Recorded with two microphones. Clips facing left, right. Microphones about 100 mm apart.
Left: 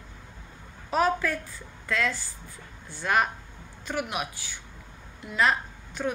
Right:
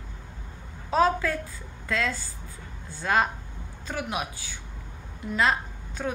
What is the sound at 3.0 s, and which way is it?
Speech, 30° right (ahead or behind).